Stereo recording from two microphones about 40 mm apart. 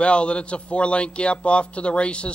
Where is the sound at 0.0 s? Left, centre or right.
Left.